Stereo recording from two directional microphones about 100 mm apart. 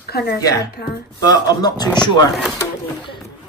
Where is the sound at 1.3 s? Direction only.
40° left (ahead or behind).